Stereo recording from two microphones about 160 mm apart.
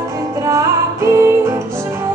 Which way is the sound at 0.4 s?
20° right (ahead or behind).